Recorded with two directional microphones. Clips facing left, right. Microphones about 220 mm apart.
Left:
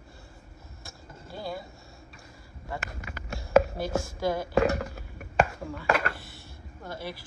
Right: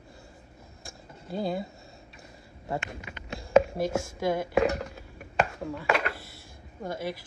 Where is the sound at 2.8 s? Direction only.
5° left (ahead or behind).